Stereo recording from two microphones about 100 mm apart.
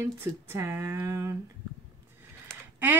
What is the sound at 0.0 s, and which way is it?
Speech, 25° right (ahead or behind).